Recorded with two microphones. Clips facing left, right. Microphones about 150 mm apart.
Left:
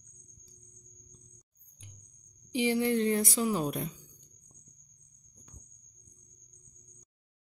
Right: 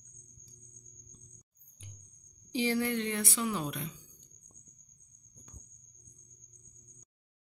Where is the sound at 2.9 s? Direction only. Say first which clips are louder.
Left 6 dB; 40° left (ahead or behind).